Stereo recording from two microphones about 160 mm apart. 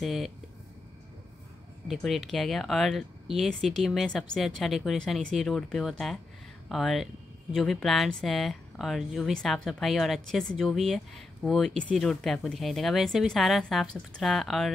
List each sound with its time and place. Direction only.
0.0 s speech: centre (ahead or behind)
1.9 s speech: centre (ahead or behind)